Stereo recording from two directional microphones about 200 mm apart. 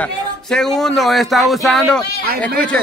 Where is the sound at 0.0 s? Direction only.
Centre (ahead or behind).